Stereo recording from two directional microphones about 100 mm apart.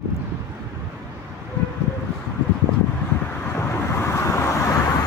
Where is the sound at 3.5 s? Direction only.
25° left (ahead or behind).